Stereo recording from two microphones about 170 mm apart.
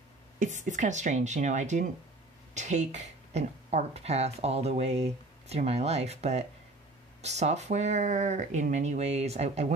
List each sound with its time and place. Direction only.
0.4 s speech: 45° right (ahead or behind)